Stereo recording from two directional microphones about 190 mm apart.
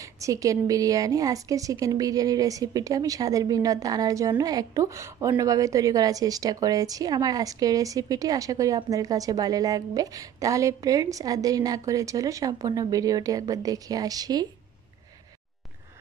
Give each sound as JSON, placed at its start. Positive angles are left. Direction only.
{"t": 0.0, "sound": "a woman's voice", "side_deg": -15}